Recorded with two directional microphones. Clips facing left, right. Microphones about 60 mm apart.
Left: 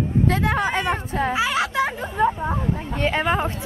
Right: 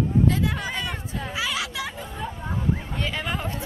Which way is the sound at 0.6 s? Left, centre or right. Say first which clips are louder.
Left 8 dB; left.